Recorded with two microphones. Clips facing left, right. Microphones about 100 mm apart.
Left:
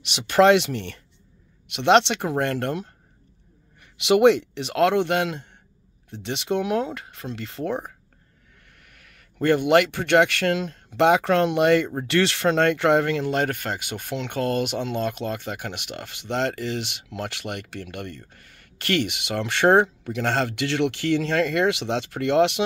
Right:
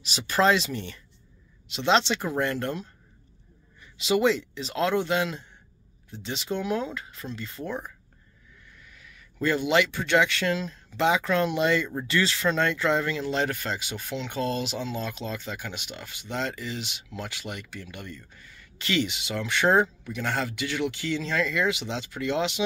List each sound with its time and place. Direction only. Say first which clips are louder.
0.0 s speech: left 6 dB; 65° left (ahead or behind)
3.8 s speech: left 7 dB; 75° left (ahead or behind)
8.6 s speech: right 2 dB; 60° left (ahead or behind)
12.1 s speech: left 4 dB; 70° left (ahead or behind); by 22.6 s 90° left